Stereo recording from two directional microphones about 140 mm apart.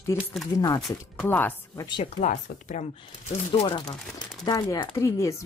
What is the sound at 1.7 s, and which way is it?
Speech, 30° left (ahead or behind).